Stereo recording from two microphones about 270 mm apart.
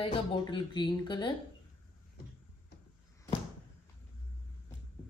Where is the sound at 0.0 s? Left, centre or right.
Centre.